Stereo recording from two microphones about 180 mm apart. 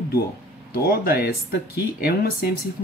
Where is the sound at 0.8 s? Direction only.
60° left (ahead or behind).